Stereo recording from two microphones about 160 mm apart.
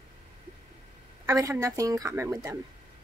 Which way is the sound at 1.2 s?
20° right (ahead or behind).